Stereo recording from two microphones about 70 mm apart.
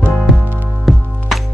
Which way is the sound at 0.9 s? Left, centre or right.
Centre.